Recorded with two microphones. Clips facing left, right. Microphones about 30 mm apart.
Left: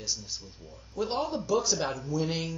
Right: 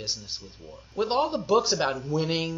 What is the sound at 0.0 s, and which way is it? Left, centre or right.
A man's voice, right.